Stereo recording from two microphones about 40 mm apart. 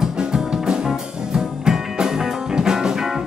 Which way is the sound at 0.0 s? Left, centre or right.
Centre.